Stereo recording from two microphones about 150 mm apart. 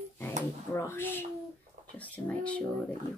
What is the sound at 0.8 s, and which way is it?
Speech, 15° left (ahead or behind).